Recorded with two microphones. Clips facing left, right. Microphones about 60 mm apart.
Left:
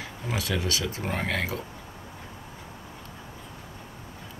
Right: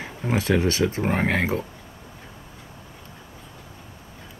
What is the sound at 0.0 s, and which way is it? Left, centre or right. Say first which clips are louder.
Speech: right 6 dB; right.